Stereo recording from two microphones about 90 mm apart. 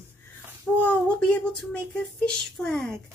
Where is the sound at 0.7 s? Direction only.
15° left (ahead or behind).